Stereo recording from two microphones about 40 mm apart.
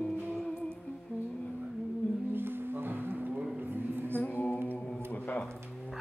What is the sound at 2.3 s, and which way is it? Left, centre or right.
Music, right.